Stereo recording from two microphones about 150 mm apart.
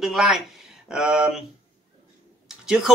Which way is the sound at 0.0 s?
Centre (ahead or behind).